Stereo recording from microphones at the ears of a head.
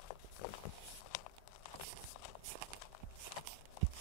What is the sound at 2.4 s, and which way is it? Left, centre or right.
Clip-clop, right.